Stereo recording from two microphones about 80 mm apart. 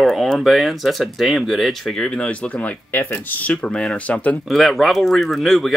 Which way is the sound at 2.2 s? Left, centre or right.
Centre.